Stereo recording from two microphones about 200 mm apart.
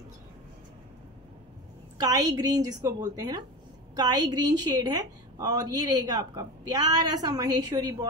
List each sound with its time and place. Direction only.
2.0 s a woman's voice: 20° right (ahead or behind)